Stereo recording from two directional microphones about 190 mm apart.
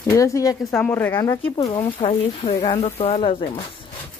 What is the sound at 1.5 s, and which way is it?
Speech, 25° left (ahead or behind).